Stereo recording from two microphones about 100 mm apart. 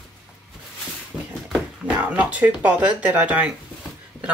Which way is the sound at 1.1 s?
10° right (ahead or behind).